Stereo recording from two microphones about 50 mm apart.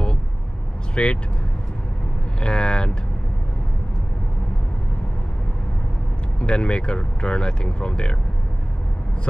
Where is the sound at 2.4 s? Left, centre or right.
Centre.